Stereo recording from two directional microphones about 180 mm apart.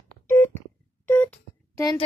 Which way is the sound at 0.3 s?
15° left (ahead or behind).